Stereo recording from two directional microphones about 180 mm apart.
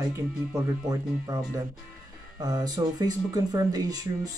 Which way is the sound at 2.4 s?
20° right (ahead or behind).